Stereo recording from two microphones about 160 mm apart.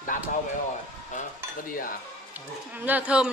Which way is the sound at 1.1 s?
55° left (ahead or behind).